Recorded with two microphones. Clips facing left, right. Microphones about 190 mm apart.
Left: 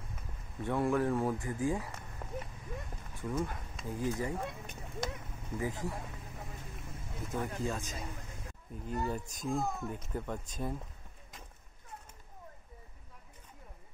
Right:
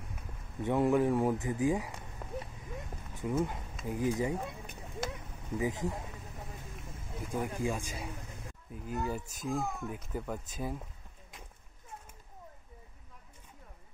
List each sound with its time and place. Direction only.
0.6 s speech: 15° right (ahead or behind)
4.4 s a sound: 5° right (ahead or behind)
5.6 s speech: 20° right (ahead or behind)
7.2 s speech: 10° right (ahead or behind)